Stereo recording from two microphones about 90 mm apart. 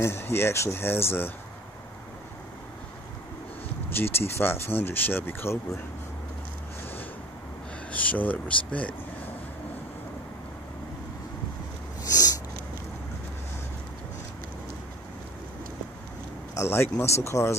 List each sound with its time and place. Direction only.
0.0 s speech: 30° left (ahead or behind)
3.9 s speech: 25° left (ahead or behind)
7.9 s speech: 20° left (ahead or behind)
12.1 s a sound: 45° left (ahead or behind)
16.5 s speech: 30° left (ahead or behind)